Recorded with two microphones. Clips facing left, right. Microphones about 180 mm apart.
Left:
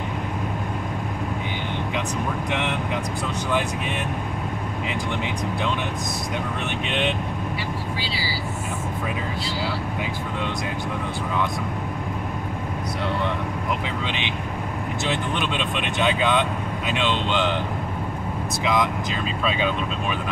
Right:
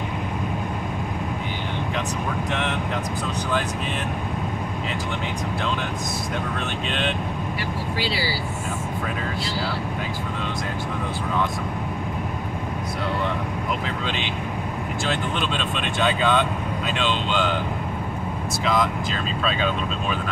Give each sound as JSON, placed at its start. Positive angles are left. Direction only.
{"t": 6.9, "sound": "speech", "side_deg": 15}
{"t": 15.0, "sound": "speech", "side_deg": 15}
{"t": 18.6, "sound": "speech", "side_deg": 15}